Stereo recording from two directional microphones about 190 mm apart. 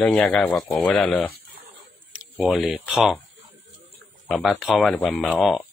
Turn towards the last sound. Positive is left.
turn(degrees=0)  # may be behind; listen again after turning